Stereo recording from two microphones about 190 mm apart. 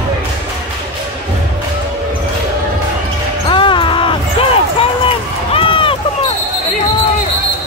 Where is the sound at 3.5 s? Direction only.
25° left (ahead or behind).